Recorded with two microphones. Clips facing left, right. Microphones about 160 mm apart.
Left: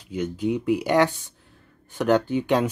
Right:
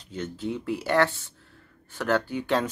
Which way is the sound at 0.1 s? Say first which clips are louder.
Left 6 dB; 15° left (ahead or behind).